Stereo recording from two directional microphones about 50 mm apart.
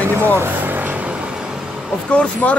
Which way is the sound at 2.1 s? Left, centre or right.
Left.